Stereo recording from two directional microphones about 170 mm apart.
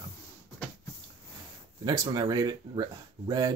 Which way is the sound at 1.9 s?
25° right (ahead or behind).